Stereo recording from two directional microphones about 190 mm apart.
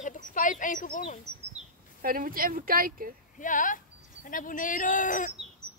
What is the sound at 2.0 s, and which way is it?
Speech, 50° right (ahead or behind).